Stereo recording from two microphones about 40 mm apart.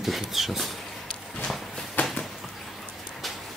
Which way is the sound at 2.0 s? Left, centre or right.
Left.